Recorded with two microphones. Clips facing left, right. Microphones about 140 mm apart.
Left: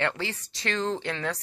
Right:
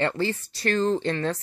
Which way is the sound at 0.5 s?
90° left.